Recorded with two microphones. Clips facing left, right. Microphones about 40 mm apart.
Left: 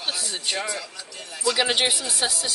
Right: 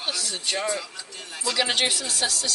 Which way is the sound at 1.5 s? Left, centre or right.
Centre.